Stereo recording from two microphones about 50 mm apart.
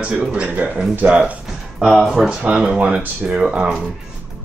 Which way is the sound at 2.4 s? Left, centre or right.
Centre.